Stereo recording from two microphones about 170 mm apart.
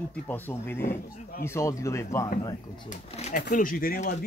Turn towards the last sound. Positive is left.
turn(degrees=50)  # may be behind; listen again after turning